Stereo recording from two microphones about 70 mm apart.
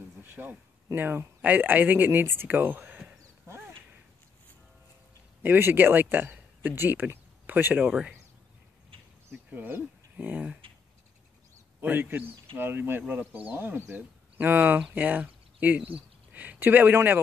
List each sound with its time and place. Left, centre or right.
0.2 s a sound: right
0.9 s speech: right
3.4 s a sound: right
5.4 s speech: right
9.5 s speech: right
11.8 s speech: right